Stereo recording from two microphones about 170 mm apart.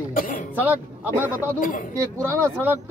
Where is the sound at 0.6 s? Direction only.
10° right (ahead or behind).